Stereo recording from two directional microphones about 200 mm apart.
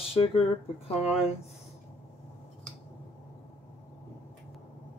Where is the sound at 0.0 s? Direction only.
30° left (ahead or behind).